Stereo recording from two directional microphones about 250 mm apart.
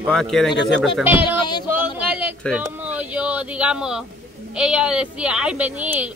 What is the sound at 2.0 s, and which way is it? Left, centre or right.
Speech, centre.